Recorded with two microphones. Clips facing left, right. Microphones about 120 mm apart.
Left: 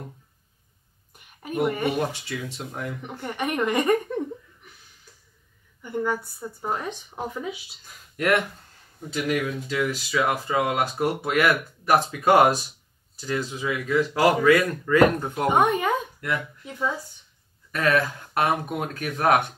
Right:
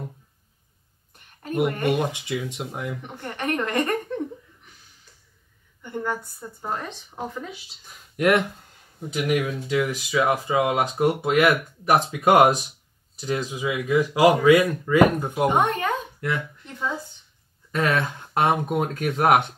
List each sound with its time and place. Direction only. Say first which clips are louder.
1.1 s a sound: right 2 dB; 10° left (ahead or behind)
1.7 s a woman's voice: right 2 dB; 10° left (ahead or behind)
2.0 s speech: right 2 dB; 20° right (ahead or behind)
3.2 s a woman's voice: left 1 dB; 10° left (ahead or behind)
5.8 s a woman's voice: left 2 dB; 5° left (ahead or behind)
9.1 s speech: right 2 dB; 15° right (ahead or behind)
15.4 s a woman's voice: left 1 dB; 5° left (ahead or behind)
17.6 s speech: left 1 dB; 25° right (ahead or behind)